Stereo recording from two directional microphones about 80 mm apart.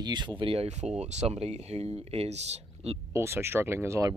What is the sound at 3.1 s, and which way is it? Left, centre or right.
Speech, right.